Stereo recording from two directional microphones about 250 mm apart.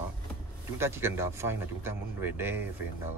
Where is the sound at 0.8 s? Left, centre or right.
Centre.